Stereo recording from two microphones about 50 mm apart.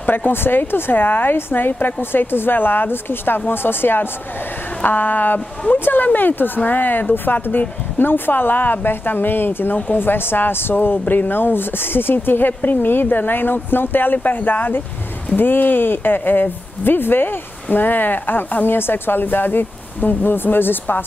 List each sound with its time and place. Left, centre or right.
0.0 s speech: left